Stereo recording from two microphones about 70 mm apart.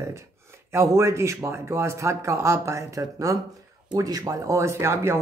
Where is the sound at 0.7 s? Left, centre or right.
Right.